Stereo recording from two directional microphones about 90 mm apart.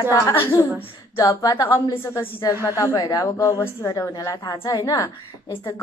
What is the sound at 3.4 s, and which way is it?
A woman's voice, 30° left (ahead or behind).